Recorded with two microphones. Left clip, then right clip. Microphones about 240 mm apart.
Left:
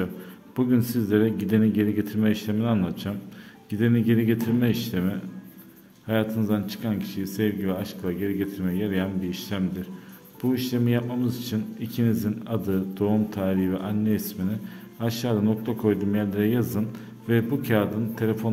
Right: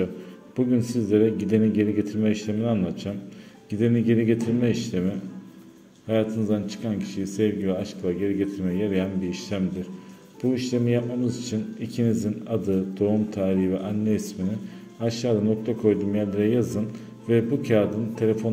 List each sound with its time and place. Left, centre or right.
0.6 s speech: centre